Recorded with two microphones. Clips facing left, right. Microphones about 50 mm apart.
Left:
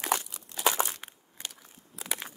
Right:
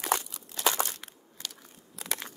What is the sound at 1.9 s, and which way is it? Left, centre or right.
Crushing, centre.